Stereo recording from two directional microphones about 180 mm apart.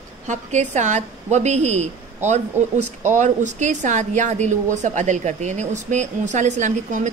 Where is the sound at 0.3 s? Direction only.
40° right (ahead or behind).